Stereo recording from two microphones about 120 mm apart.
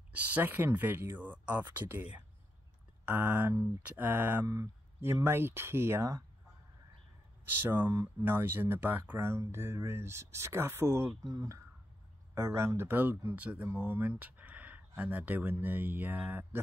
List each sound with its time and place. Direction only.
0.1 s speech: 15° right (ahead or behind)
4.5 s speech: 25° right (ahead or behind)
7.4 s speech: 15° right (ahead or behind)